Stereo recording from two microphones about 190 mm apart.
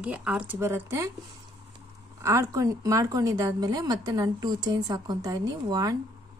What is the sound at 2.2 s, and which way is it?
Speech, 15° right (ahead or behind).